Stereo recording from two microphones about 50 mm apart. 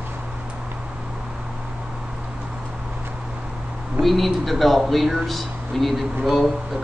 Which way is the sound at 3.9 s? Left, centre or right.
Centre.